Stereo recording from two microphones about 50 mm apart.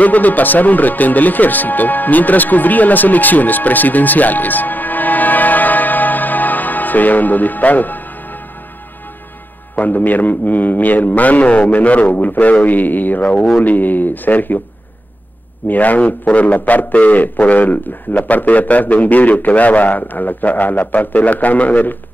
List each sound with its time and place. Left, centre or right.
0.0 s speech: left
9.8 s a man's voice: left
15.7 s a man's voice: left